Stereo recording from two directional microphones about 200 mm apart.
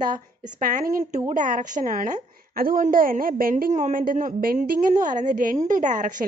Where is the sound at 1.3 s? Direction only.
40° right (ahead or behind).